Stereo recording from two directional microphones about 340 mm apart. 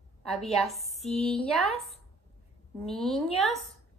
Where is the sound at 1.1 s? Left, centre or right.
Centre.